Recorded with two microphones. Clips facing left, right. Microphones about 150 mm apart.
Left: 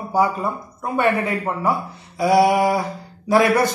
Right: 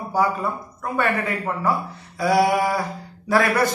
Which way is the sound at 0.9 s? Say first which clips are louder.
Left 4 dB; 20° left (ahead or behind).